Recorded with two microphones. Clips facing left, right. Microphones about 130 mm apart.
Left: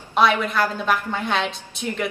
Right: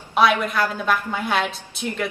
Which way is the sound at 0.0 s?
5° right (ahead or behind).